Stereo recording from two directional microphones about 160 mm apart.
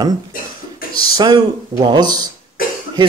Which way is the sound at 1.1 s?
30° right (ahead or behind).